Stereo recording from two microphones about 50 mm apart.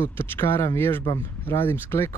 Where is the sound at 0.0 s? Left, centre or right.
Left.